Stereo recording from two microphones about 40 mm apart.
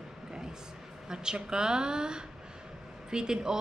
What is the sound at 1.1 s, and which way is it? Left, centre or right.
A woman's voice, centre.